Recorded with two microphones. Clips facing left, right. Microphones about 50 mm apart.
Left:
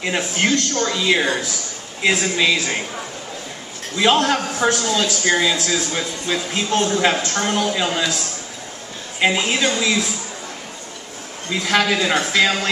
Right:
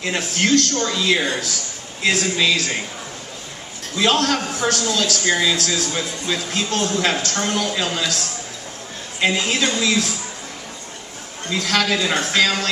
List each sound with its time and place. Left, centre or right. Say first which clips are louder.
0.0 s a man's voice: left 1 dB; centre
3.9 s a man's voice: left 2 dB; centre
9.2 s a man's voice: left 1 dB; centre
11.5 s a man's voice: left 2 dB; centre